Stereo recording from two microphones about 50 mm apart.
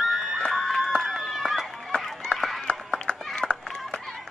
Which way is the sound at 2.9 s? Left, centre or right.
Centre.